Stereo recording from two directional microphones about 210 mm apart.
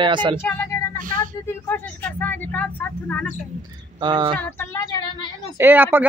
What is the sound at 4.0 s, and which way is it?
Speech, 20° right (ahead or behind).